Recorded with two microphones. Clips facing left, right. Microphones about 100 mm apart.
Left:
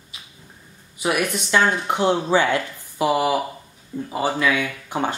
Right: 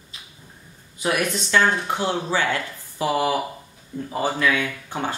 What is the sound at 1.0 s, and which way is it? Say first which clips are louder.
Speech: left 1 dB; 15° left (ahead or behind).